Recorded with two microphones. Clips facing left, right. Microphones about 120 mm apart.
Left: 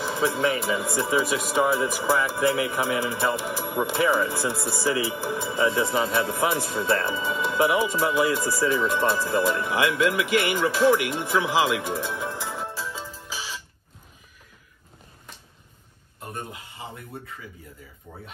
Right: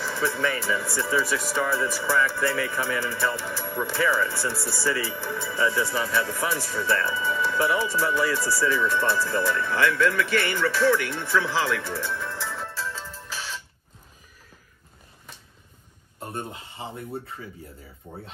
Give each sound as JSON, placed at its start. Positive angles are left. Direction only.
{"t": 0.0, "sound": "speech", "side_deg": 20}
{"t": 12.9, "sound": "music", "side_deg": 5}
{"t": 16.2, "sound": "speech", "side_deg": -30}